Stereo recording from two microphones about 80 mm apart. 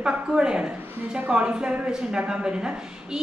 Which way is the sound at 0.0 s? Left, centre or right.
Centre.